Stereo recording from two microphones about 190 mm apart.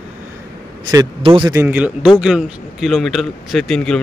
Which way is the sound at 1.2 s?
25° right (ahead or behind).